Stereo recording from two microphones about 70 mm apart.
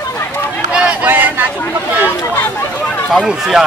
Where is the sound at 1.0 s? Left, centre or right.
Right.